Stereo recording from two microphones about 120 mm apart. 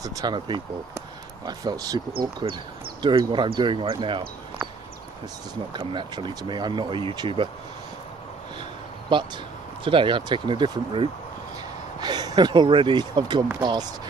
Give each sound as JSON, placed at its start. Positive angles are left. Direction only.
{"t": 0.0, "sound": "speech", "side_deg": -35}
{"t": 5.7, "sound": "speech", "side_deg": -40}
{"t": 9.8, "sound": "speech", "side_deg": -45}